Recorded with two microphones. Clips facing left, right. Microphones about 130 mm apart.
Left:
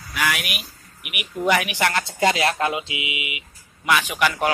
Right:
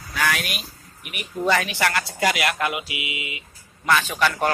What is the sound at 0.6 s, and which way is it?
Speech, 10° left (ahead or behind).